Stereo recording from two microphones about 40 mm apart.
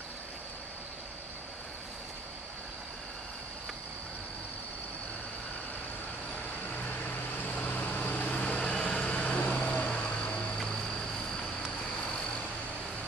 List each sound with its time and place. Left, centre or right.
7.1 s vehicle: left
8.5 s vehicle: centre
9.0 s vehicle: left